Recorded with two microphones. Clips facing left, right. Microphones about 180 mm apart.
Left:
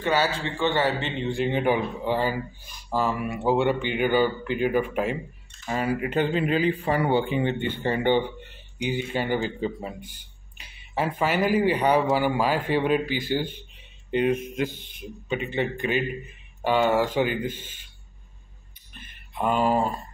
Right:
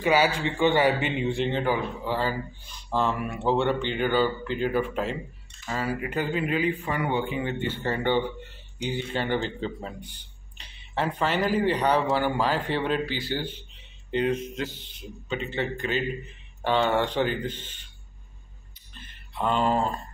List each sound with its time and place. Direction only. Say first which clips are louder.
0.0 s speech: right 2 dB; 10° right (ahead or behind)
1.4 s speech: left 6 dB; 15° left (ahead or behind)
7.7 s speech: left 2 dB; 15° left (ahead or behind)
14.7 s speech: left 3 dB; 55° left (ahead or behind)
15.2 s speech: left 3 dB; 15° left (ahead or behind)
18.9 s a sound: left 2 dB; 15° left (ahead or behind)